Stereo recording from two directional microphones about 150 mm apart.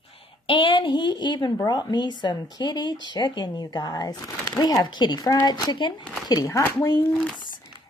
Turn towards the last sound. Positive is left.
turn(degrees=25)  # may be behind; listen again after turning